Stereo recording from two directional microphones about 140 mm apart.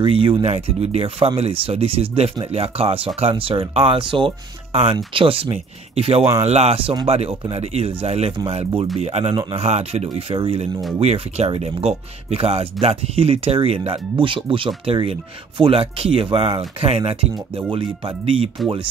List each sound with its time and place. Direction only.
0.0 s speech: 40° right (ahead or behind)
9.3 s speech: 30° right (ahead or behind)
9.6 s speech: 50° right (ahead or behind)